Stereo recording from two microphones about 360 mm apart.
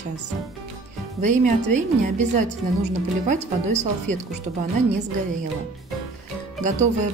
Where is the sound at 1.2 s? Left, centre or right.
Right.